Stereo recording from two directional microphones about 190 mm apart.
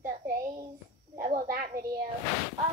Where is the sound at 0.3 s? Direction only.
45° right (ahead or behind).